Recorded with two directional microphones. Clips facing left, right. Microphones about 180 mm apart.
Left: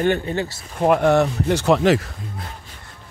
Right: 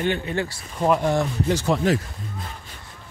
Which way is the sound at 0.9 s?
70° left (ahead or behind).